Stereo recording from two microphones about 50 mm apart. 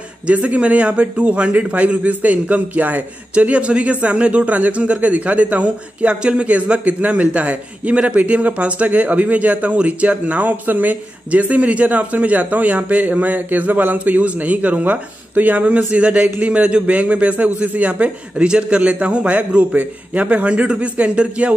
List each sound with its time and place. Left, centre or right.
0.3 s a man's voice: right
3.3 s a man's voice: right